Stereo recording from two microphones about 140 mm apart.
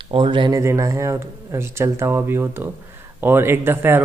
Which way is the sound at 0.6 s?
20° right (ahead or behind).